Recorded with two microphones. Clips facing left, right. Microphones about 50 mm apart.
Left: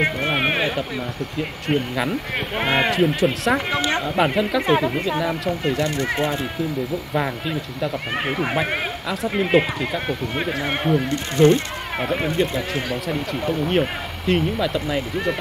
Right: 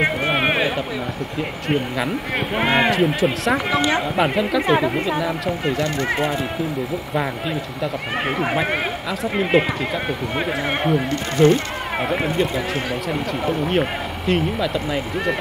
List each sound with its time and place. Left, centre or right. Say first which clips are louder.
0.0 s a sound: right 2 dB; centre
1.4 s speech: even; centre
7.2 s speech: right 1 dB; centre